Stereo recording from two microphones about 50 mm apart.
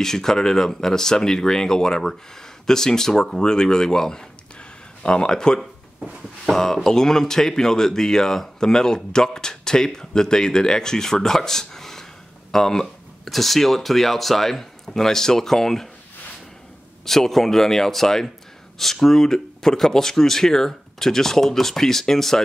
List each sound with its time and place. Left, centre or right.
0.0 s speech: centre
5.9 s a sound: centre
6.5 s speech: centre
17.0 s speech: centre